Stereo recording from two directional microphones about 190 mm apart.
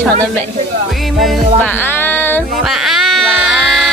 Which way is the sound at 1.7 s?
10° left (ahead or behind).